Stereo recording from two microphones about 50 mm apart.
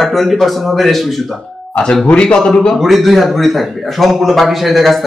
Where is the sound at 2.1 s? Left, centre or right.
Centre.